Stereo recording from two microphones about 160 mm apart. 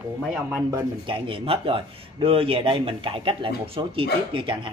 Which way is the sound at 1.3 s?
35° right (ahead or behind).